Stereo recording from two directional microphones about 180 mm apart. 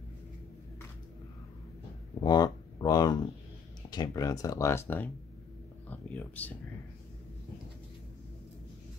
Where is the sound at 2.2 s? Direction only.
20° left (ahead or behind).